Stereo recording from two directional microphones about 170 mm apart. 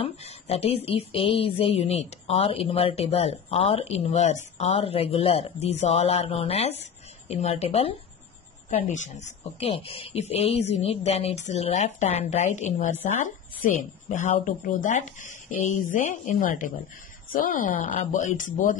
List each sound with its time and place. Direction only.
0.0 s speech: 35° left (ahead or behind)
8.6 s speech: 45° left (ahead or behind)